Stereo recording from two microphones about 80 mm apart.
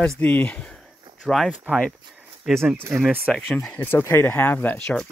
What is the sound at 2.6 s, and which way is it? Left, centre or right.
Speech, right.